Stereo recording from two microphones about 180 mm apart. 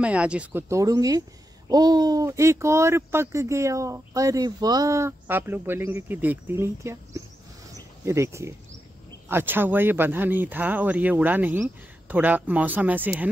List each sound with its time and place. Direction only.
0.0 s speech: 5° right (ahead or behind)
7.7 s a sound: 15° right (ahead or behind)
9.3 s speech: 10° right (ahead or behind)